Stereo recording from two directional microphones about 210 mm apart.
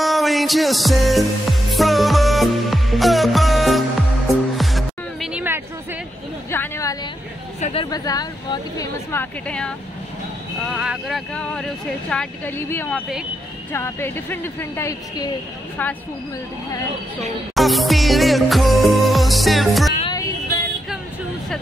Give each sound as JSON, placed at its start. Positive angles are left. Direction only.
{"t": 0.0, "sound": "music", "side_deg": 0}
{"t": 6.5, "sound": "a sound", "side_deg": 15}
{"t": 7.6, "sound": "a woman's voice", "side_deg": 25}
{"t": 10.7, "sound": "a woman's voice", "side_deg": -5}
{"t": 17.6, "sound": "music", "side_deg": 0}
{"t": 20.0, "sound": "music", "side_deg": 20}